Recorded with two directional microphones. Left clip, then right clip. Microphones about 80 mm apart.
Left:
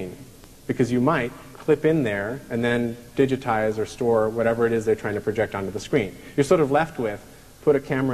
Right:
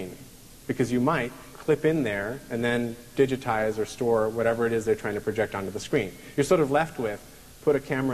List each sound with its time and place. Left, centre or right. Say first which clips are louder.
0.7 s speech: left 3 dB; right